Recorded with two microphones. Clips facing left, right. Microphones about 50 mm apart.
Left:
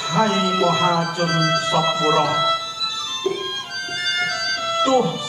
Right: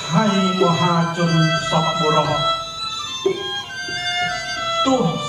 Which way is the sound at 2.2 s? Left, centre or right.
Left.